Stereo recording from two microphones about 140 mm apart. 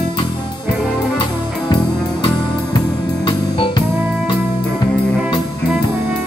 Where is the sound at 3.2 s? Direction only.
35° left (ahead or behind).